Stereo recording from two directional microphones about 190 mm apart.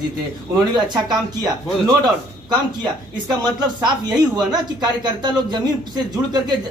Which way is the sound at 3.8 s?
20° right (ahead or behind).